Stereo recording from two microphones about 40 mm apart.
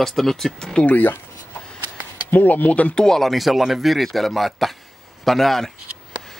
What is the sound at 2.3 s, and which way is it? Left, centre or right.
Speech, left.